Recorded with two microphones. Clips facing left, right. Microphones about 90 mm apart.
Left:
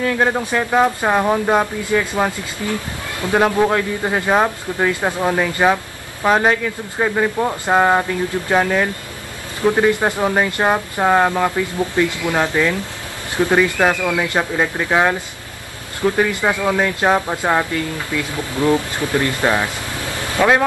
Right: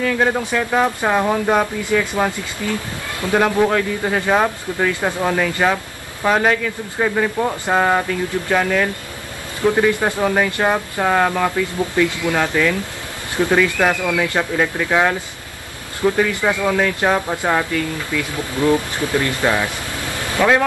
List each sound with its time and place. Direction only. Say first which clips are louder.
0.0 s speech: even; 10° left (ahead or behind)
2.6 s speech: even; 25° left (ahead or behind); by 11.5 s 10° left (ahead or behind)
12.0 s speech: even; 20° left (ahead or behind)